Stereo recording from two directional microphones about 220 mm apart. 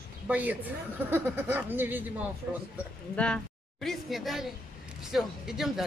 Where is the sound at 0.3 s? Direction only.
5° right (ahead or behind).